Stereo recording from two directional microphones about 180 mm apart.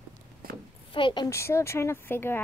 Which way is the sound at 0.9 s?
25° left (ahead or behind).